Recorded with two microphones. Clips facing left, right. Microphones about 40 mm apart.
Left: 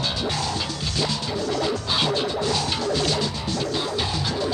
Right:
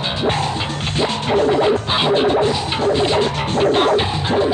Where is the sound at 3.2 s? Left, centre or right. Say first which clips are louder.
Right 10 dB; right.